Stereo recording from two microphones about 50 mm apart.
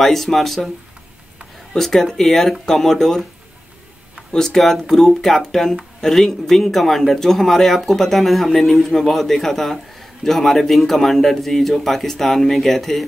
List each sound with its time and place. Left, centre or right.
0.0 s speech: centre
1.7 s speech: centre
4.3 s speech: centre
4.6 s speech: centre